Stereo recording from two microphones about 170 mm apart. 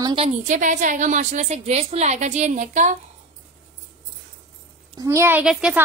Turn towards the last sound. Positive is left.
turn(degrees=-5)  # may be behind; listen again after turning